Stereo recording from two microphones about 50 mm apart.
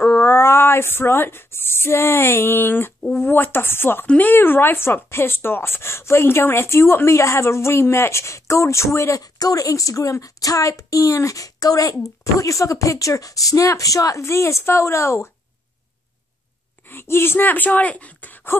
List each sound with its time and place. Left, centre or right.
0.0 s a woman's voice: left
9.7 s speech: left
12.4 s a woman's voice: left
16.8 s speech: left